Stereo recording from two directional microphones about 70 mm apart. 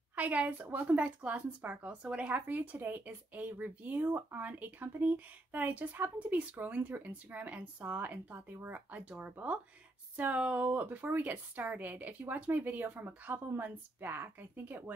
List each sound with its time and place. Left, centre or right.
0.1 s a woman's voice: centre